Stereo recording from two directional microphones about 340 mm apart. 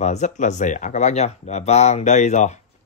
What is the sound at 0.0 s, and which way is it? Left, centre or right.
Speech, centre.